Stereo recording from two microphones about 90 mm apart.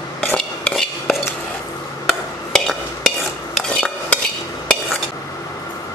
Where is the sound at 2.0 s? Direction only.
5° left (ahead or behind).